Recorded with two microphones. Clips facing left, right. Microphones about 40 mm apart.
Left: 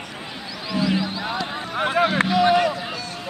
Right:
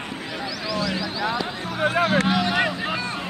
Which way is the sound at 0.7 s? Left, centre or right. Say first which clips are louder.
Left 5 dB; left.